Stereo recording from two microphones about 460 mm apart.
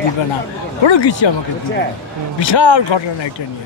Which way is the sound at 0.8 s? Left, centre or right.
Left.